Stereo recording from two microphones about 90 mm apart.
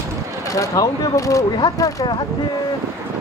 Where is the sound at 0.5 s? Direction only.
40° left (ahead or behind).